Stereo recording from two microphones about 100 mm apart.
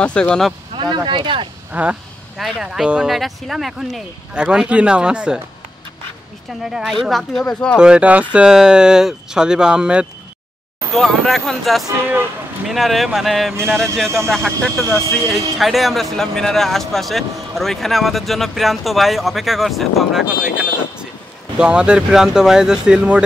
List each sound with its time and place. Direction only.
0.0 s speech: 10° left (ahead or behind)
0.7 s speech: 50° right (ahead or behind)
1.7 s speech: 15° right (ahead or behind)
6.6 s speech: centre (ahead or behind)
7.7 s speech: 10° right (ahead or behind)
10.9 s speech: centre (ahead or behind)